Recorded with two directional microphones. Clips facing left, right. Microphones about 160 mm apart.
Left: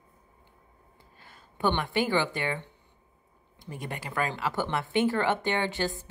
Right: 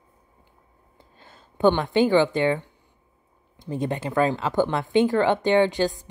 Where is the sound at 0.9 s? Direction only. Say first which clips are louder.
Right 5 dB; 25° right (ahead or behind).